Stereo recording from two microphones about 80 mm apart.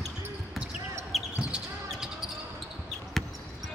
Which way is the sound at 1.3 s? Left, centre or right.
Centre.